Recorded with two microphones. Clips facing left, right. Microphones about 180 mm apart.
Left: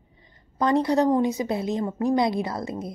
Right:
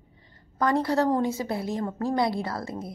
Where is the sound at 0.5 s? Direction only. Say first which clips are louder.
Left 3 dB; 20° left (ahead or behind).